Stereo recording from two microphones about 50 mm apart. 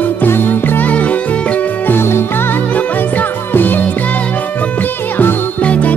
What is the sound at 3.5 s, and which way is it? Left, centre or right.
Music, left.